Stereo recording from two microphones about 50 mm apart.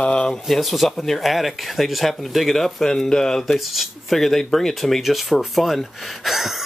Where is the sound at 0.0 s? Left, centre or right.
Left.